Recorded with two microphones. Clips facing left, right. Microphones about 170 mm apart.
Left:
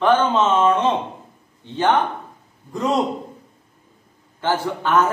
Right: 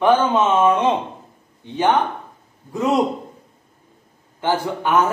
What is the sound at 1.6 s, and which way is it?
Speech, 15° right (ahead or behind).